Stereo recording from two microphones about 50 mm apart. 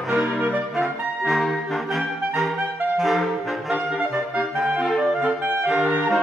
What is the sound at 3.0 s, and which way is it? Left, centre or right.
Saxophone, centre.